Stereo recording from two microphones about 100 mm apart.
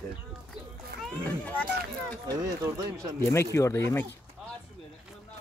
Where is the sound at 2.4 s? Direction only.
40° right (ahead or behind).